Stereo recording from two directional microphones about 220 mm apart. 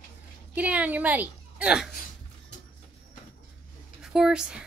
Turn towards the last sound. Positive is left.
turn(degrees=-5)  # may be behind; listen again after turning